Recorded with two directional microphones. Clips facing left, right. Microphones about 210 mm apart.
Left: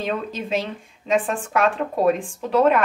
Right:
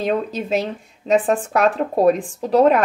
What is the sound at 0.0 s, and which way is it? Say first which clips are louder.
Speech: right 5 dB; 40° right (ahead or behind).